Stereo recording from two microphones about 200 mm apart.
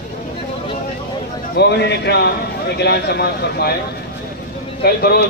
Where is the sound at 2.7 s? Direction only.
55° left (ahead or behind).